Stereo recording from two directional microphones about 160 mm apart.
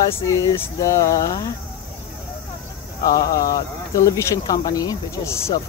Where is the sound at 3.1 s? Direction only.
20° left (ahead or behind).